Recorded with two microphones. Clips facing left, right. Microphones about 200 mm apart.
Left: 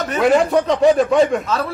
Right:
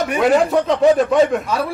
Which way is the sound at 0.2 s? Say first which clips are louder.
Left 1 dB; centre (ahead or behind).